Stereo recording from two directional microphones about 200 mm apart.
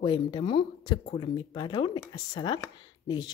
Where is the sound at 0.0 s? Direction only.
25° left (ahead or behind).